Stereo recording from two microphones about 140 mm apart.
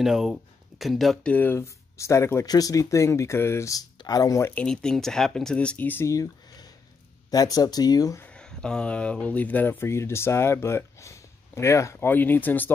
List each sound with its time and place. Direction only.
0.0 s speech: 5° right (ahead or behind)
1.3 s speech: 15° left (ahead or behind)
4.6 s speech: 5° left (ahead or behind); by 8.2 s 25° left (ahead or behind)
8.2 s speech: 5° left (ahead or behind)